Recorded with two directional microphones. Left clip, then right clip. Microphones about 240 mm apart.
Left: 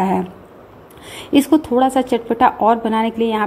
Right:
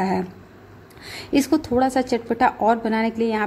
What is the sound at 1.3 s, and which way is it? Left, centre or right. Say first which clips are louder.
Speech: left 5 dB; centre.